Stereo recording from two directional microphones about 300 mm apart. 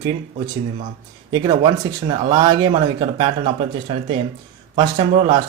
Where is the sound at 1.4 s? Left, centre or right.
Centre.